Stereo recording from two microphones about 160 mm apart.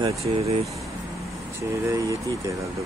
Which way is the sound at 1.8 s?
20° right (ahead or behind).